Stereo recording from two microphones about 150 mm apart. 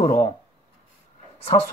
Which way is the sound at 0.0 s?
50° left (ahead or behind).